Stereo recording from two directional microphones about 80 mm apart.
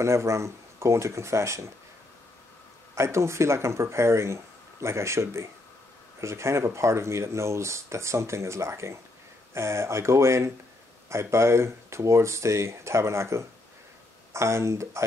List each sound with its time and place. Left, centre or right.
0.0 s speech: right
2.9 s speech: right